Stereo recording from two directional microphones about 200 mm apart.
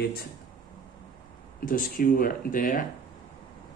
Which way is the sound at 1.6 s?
45° left (ahead or behind).